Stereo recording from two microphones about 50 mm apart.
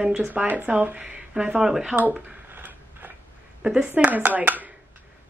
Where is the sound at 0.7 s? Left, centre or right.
Right.